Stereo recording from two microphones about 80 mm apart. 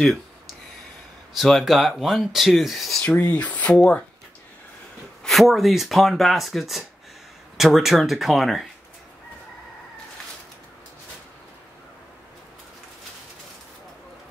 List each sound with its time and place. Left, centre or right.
1.3 s speech: centre
3.3 s speech: centre
5.2 s speech: centre